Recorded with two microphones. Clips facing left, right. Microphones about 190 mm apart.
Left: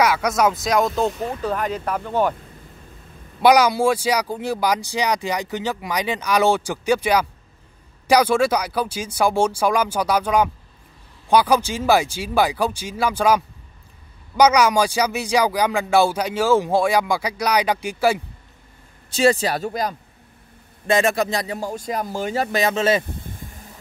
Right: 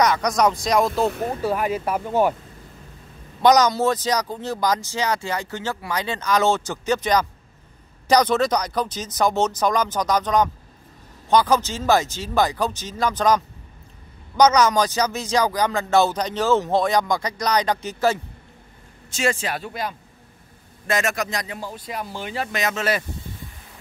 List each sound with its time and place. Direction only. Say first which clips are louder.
0.0 s speech: left 1 dB; 5° left (ahead or behind); by 2.3 s 10° right (ahead or behind)
3.4 s speech: left 1 dB; 10° left (ahead or behind)
19.0 s speech: left 6 dB; 35° left (ahead or behind)
23.0 s speech: left 1 dB; 50° left (ahead or behind)